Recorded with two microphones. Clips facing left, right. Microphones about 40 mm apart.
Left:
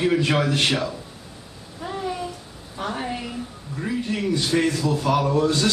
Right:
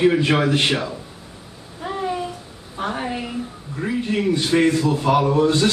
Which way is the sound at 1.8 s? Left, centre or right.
Centre.